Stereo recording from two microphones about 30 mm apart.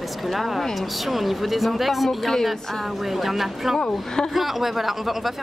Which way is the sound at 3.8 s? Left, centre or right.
Left.